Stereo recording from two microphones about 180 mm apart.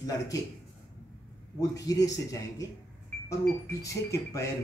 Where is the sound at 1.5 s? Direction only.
20° left (ahead or behind).